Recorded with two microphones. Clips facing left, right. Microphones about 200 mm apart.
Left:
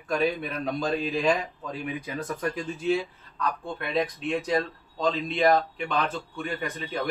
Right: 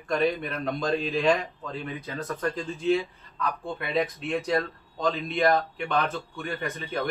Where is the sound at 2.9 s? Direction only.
Centre (ahead or behind).